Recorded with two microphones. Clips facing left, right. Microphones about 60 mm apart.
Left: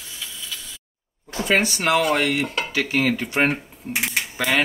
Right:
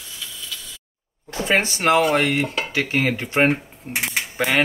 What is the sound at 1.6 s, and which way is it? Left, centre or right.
Speech, right.